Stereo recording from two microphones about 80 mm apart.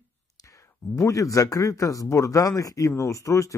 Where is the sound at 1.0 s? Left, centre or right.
Left.